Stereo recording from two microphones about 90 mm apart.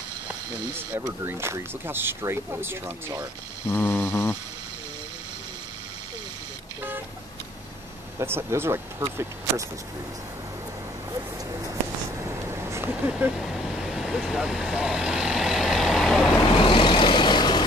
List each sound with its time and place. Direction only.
0.9 s speech: 25° right (ahead or behind)
3.6 s mantra: 25° left (ahead or behind)
8.2 s speech: 30° right (ahead or behind)
12.6 s vehicle: 30° right (ahead or behind)
13.4 s vehicle: centre (ahead or behind)
16.5 s vehicle: 70° left (ahead or behind)